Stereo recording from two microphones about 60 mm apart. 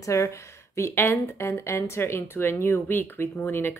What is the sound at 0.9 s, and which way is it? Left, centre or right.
Speech, left.